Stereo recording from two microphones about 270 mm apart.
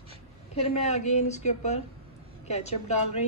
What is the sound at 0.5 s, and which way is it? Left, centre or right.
A woman's voice, left.